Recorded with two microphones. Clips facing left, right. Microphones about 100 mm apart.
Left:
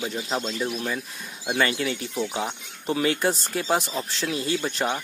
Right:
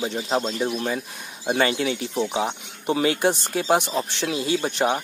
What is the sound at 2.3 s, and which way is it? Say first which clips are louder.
Speech: right 4 dB; 20° right (ahead or behind).